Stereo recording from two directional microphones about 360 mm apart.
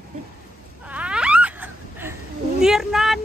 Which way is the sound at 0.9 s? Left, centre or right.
Centre.